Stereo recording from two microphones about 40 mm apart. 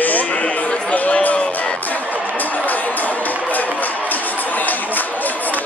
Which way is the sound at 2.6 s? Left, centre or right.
Left.